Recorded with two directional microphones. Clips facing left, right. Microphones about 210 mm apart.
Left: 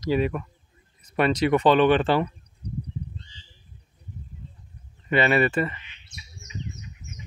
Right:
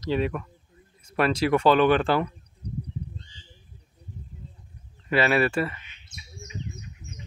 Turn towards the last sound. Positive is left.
turn(degrees=-50)  # may be behind; listen again after turning